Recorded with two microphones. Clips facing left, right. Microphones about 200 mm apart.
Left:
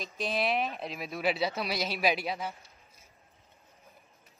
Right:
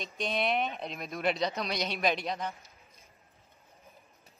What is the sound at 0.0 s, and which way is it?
Speech, centre (ahead or behind).